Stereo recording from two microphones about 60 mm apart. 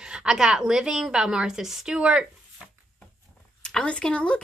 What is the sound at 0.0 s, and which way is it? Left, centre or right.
A woman's voice, centre.